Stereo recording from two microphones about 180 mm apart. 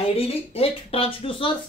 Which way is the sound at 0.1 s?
30° left (ahead or behind).